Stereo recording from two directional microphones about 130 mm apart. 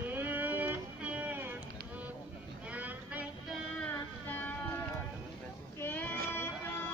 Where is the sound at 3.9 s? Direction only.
15° left (ahead or behind).